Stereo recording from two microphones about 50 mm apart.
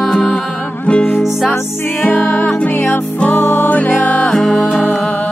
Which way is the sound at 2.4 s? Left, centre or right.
Left.